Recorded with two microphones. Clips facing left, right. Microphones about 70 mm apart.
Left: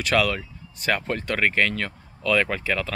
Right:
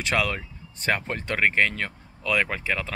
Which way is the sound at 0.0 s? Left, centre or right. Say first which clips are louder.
Left 3 dB; right.